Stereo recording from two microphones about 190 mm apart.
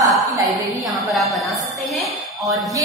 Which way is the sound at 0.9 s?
Centre (ahead or behind).